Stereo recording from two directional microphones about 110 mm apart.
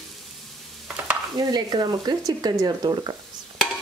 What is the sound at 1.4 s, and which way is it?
Speech, 40° right (ahead or behind).